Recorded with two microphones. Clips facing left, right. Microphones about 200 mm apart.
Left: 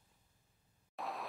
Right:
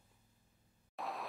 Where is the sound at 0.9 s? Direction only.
Centre (ahead or behind).